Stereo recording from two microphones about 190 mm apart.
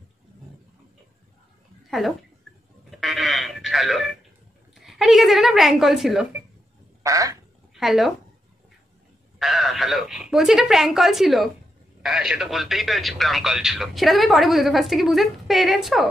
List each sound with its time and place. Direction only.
1.9 s speech: centre (ahead or behind)
2.9 s sheep: centre (ahead or behind)
4.7 s speech: centre (ahead or behind)
7.0 s duck: 15° right (ahead or behind)
7.7 s speech: centre (ahead or behind)
9.4 s speech: centre (ahead or behind)